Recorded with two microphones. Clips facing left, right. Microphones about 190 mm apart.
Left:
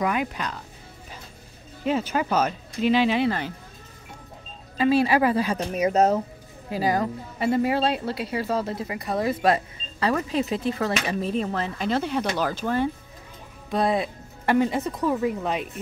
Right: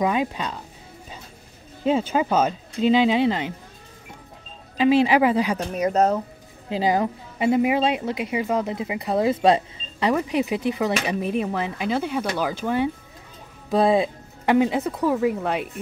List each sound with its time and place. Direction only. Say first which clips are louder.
0.0 s speech: right 3 dB; 25° right (ahead or behind)
1.9 s speech: right 3 dB; 25° right (ahead or behind)
4.7 s a woman's voice: right 3 dB; 15° right (ahead or behind)
5.6 s speech: even; 5° left (ahead or behind)
6.7 s a woman's voice: right 2 dB; 20° right (ahead or behind)
13.7 s speech: right 5 dB; 30° right (ahead or behind)
14.4 s a woman's voice: right 2 dB; 15° right (ahead or behind)